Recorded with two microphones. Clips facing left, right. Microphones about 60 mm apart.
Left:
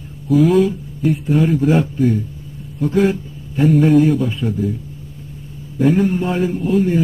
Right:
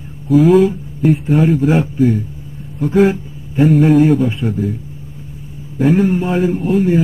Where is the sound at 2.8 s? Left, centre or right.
Centre.